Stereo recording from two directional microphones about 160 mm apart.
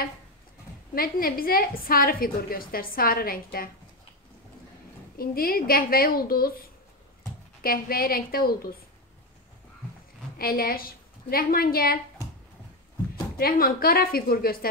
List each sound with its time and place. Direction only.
0.9 s a woman's voice: 65° left (ahead or behind)
5.1 s a woman's voice: 70° left (ahead or behind)
7.6 s a woman's voice: 65° left (ahead or behind)
10.3 s a woman's voice: 70° left (ahead or behind)
13.4 s a woman's voice: 65° left (ahead or behind)